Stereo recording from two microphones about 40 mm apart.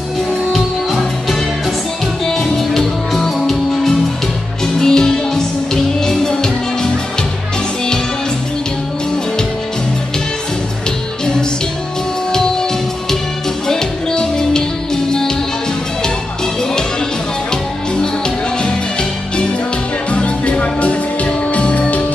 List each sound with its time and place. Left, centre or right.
2.2 s music: centre
4.7 s music: centre
13.7 s music: centre
20.1 s music: left